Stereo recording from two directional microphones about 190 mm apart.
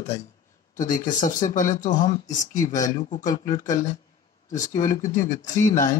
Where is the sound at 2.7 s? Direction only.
20° left (ahead or behind).